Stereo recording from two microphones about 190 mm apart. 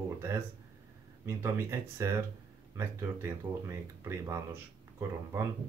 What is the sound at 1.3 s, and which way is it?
Speech, 15° right (ahead or behind).